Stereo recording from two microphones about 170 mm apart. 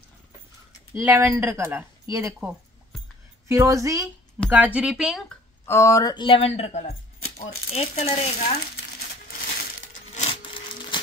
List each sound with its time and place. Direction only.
0.9 s a woman's voice: 15° right (ahead or behind)
5.7 s speech: 15° left (ahead or behind); by 6.8 s 35° left (ahead or behind)
7.4 s stir: 40° left (ahead or behind)
10.1 s a sound: 35° left (ahead or behind)